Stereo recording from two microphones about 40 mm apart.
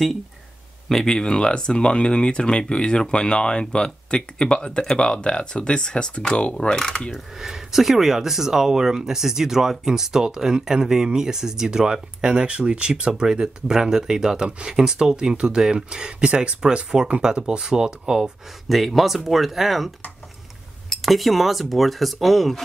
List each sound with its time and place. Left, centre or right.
1.0 s speech: centre
7.3 s speech: centre
18.7 s cutlery: centre
21.0 s cutlery: centre